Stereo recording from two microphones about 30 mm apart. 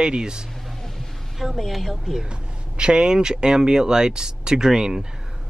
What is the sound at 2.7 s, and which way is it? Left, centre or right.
Speech, right.